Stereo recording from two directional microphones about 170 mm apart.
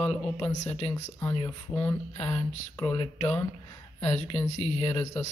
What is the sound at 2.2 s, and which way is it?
Speech, 35° left (ahead or behind).